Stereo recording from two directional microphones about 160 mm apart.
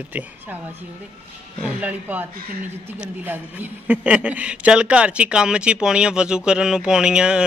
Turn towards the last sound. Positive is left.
turn(degrees=-5)  # may be behind; listen again after turning